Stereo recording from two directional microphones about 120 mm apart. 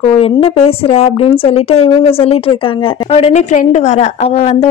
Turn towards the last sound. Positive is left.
turn(degrees=60)  # may be behind; listen again after turning